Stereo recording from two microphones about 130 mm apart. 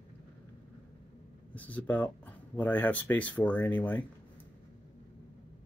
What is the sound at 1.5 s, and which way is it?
Speech, 10° left (ahead or behind).